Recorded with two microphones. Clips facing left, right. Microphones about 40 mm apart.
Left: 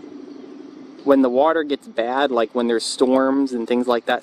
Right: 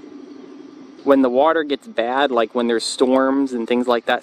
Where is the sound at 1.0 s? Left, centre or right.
Right.